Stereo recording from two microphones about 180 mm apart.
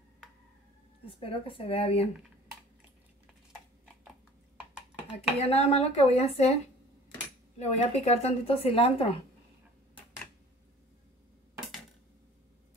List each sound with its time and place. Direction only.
1.0 s a woman's voice: 30° left (ahead or behind)
5.4 s a woman's voice: 35° left (ahead or behind)